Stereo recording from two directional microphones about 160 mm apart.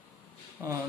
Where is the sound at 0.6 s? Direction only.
10° right (ahead or behind).